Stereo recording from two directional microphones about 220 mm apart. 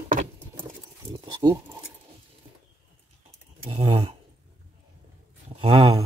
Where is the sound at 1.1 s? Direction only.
20° right (ahead or behind).